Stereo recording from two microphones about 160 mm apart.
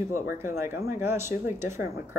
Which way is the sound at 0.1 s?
15° right (ahead or behind).